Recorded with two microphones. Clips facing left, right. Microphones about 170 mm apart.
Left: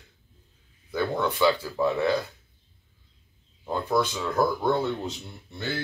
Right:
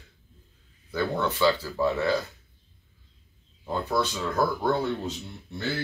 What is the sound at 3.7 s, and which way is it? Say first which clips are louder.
Speech: left 2 dB; 15° left (ahead or behind).